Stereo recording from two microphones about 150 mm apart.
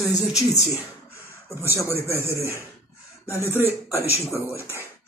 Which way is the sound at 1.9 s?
15° right (ahead or behind).